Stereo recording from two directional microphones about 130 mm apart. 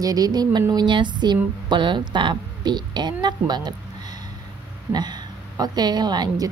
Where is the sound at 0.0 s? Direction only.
30° right (ahead or behind).